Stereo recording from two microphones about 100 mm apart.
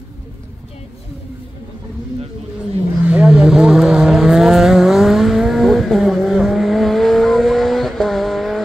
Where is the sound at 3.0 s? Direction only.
10° right (ahead or behind).